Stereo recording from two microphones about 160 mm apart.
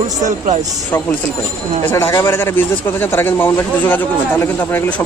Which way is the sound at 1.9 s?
15° left (ahead or behind).